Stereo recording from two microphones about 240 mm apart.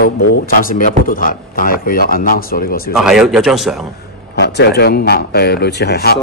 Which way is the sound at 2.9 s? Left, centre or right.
Centre.